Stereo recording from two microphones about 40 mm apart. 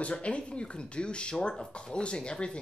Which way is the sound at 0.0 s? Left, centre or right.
Left.